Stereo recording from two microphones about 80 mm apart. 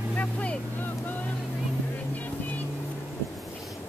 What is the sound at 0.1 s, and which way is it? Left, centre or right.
Motorboat, centre.